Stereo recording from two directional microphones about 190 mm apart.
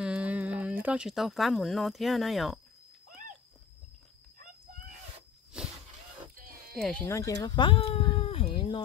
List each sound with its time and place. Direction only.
0.0 s music: 5° right (ahead or behind)
0.8 s speech: 5° right (ahead or behind)
6.3 s oink: 50° right (ahead or behind)
7.1 s speech: 15° left (ahead or behind)
7.4 s a sound: 25° left (ahead or behind)